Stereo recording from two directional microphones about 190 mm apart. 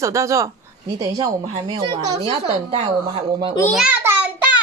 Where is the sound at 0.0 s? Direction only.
15° right (ahead or behind).